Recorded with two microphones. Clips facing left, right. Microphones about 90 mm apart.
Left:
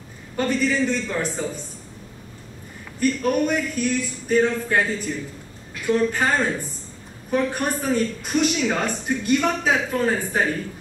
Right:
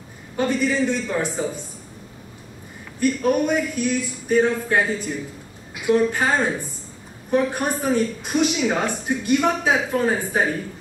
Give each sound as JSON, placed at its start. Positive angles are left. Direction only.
{"t": 0.4, "sound": "speech", "side_deg": -10}
{"t": 3.0, "sound": "speech", "side_deg": -10}